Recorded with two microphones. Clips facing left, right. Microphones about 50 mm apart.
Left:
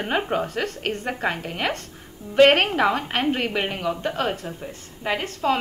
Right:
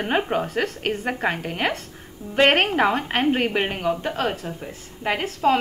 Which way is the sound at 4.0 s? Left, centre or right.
Centre.